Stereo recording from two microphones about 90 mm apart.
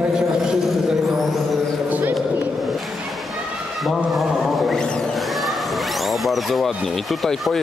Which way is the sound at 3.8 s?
Centre (ahead or behind).